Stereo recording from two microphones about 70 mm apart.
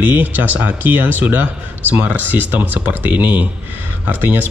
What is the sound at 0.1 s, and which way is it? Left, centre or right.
A man's voice, right.